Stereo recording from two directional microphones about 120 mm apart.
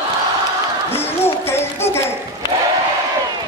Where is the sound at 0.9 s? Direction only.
20° left (ahead or behind).